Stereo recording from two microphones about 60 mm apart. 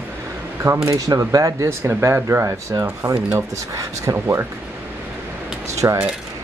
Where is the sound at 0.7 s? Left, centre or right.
Right.